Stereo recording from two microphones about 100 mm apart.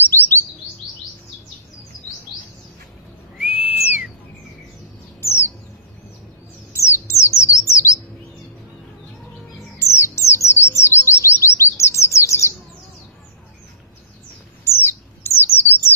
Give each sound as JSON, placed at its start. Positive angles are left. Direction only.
{"t": 0.0, "sound": "chirp", "side_deg": 20}
{"t": 3.3, "sound": "whistle", "side_deg": -15}
{"t": 5.2, "sound": "bird", "side_deg": 25}
{"t": 6.7, "sound": "a sound", "side_deg": 25}
{"t": 7.5, "sound": "bird", "side_deg": 30}
{"t": 9.8, "sound": "bird", "side_deg": 25}
{"t": 10.8, "sound": "chirp", "side_deg": 25}
{"t": 14.6, "sound": "bird", "side_deg": 25}